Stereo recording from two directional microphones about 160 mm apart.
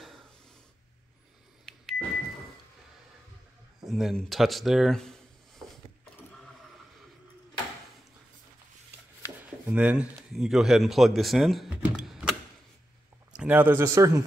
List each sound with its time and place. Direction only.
1.7 s a sound: 5° left (ahead or behind)
3.8 s speech: centre (ahead or behind)
9.7 s speech: 10° right (ahead or behind)